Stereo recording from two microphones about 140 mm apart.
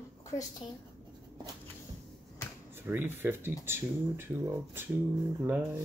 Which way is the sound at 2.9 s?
15° right (ahead or behind).